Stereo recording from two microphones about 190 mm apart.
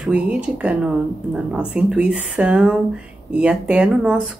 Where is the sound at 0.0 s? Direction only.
5° right (ahead or behind).